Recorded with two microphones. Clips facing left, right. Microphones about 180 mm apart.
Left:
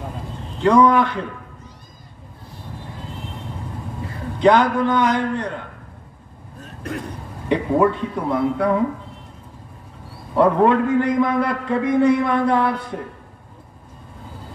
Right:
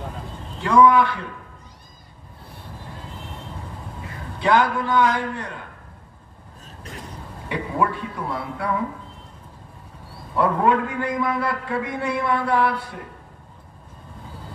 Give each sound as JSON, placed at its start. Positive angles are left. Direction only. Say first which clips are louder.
{"t": 0.7, "sound": "a man's voice", "louder": "left 2 dB", "side_deg": 20}
{"t": 4.4, "sound": "a man's voice", "louder": "left 5 dB", "side_deg": 20}
{"t": 6.6, "sound": "a sound", "louder": "left 11 dB", "side_deg": 60}
{"t": 7.4, "sound": "a man's voice", "louder": "left 7 dB", "side_deg": 20}
{"t": 10.3, "sound": "a man's voice", "louder": "left 5 dB", "side_deg": 20}